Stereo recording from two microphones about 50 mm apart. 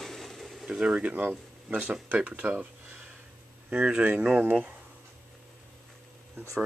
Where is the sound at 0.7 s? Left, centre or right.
Centre; by 3.1 s right.